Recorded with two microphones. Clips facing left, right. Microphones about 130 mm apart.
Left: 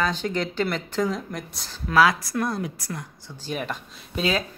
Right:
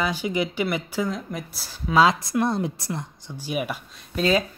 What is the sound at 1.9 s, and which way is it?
Speech, 20° right (ahead or behind).